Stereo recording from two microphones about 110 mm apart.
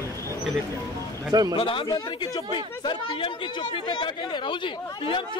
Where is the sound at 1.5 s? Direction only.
50° left (ahead or behind).